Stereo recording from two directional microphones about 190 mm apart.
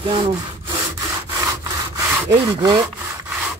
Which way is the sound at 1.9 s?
20° right (ahead or behind).